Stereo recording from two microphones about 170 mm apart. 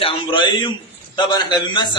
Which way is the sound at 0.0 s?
30° left (ahead or behind).